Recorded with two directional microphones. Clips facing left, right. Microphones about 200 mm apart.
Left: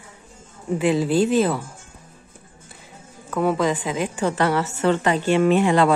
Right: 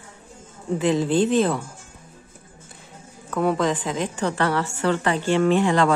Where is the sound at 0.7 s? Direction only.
5° left (ahead or behind).